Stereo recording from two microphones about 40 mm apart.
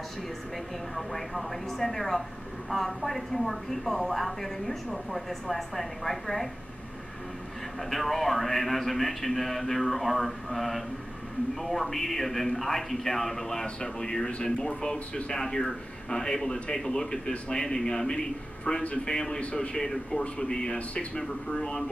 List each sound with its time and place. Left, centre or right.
0.9 s a man's voice: centre
7.9 s a man's voice: centre